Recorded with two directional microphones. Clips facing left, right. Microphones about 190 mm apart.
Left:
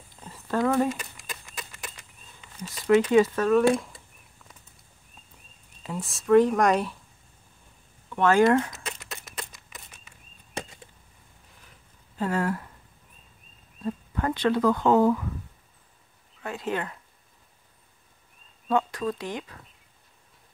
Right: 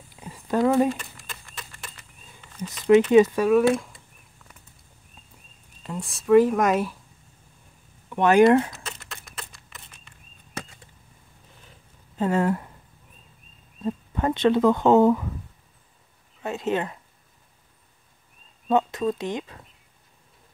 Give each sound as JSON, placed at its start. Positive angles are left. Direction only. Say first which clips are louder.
{"t": 0.1, "sound": "a sound", "louder": "right 3 dB", "side_deg": -10}
{"t": 2.6, "sound": "speech", "louder": "right 4 dB", "side_deg": -20}
{"t": 5.8, "sound": "speech", "louder": "right 1 dB", "side_deg": 0}
{"t": 8.1, "sound": "speech", "louder": "right 4 dB", "side_deg": -15}
{"t": 9.4, "sound": "a sound", "louder": "left 2 dB", "side_deg": 15}
{"t": 12.2, "sound": "speech", "louder": "right 4 dB", "side_deg": -20}
{"t": 13.8, "sound": "speech", "louder": "right 3 dB", "side_deg": -20}
{"t": 16.4, "sound": "speech", "louder": "right 4 dB", "side_deg": -25}
{"t": 18.7, "sound": "speech", "louder": "right 3 dB", "side_deg": -20}